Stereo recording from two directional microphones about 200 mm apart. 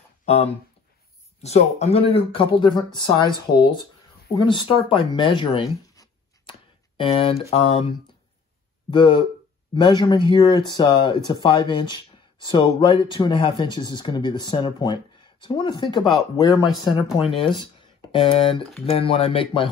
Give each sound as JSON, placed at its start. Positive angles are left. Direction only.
{"t": 0.2, "sound": "a sound", "side_deg": 30}
{"t": 1.4, "sound": "speech", "side_deg": 30}
{"t": 7.0, "sound": "speech", "side_deg": 25}
{"t": 8.9, "sound": "speech", "side_deg": 25}